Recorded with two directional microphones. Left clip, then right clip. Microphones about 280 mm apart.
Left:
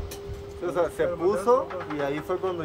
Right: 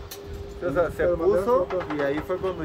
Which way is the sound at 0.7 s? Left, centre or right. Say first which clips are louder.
Right 3 dB; left.